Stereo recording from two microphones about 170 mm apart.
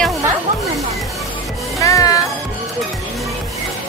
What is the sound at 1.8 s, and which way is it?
Music, 20° left (ahead or behind).